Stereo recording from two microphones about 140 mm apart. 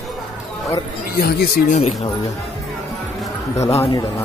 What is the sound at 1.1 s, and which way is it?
Speech, 90° left.